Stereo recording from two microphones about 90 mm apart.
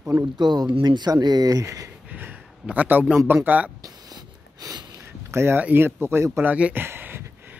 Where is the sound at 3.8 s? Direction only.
45° right (ahead or behind).